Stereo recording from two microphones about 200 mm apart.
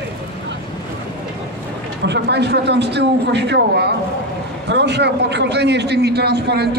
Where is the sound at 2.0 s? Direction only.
60° right (ahead or behind).